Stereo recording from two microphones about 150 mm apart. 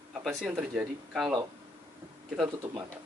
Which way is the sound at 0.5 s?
10° right (ahead or behind).